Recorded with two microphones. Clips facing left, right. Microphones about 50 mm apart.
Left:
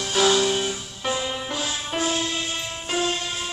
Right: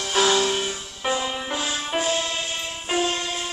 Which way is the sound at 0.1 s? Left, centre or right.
Centre.